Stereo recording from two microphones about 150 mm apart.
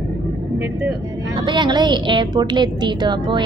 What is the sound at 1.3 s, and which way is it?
A woman's voice, 30° right (ahead or behind).